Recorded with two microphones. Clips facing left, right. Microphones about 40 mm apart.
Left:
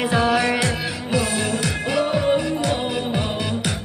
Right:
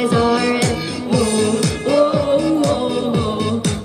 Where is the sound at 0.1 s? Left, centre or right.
Left.